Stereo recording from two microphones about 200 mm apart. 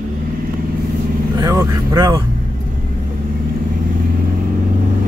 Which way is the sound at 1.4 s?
15° right (ahead or behind).